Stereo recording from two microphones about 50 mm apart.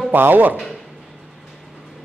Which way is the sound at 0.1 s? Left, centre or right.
Right.